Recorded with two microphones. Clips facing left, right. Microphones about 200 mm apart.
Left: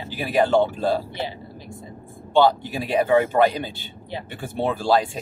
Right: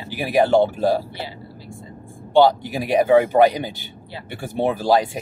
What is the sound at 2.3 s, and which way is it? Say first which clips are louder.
Speech: right 3 dB; 15° right (ahead or behind).